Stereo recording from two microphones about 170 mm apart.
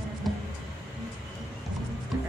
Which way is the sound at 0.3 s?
Centre (ahead or behind).